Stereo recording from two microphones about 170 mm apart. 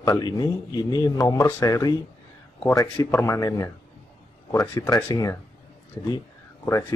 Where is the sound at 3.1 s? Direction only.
15° left (ahead or behind).